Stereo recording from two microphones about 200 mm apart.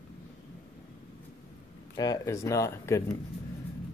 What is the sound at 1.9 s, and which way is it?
Speech, 20° left (ahead or behind).